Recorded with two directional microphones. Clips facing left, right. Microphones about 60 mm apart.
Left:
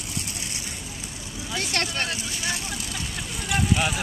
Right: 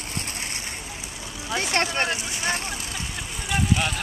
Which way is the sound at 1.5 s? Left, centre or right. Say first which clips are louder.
Right 4 dB; right.